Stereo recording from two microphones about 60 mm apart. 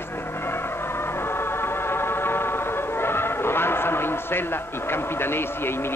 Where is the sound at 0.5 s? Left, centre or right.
Left.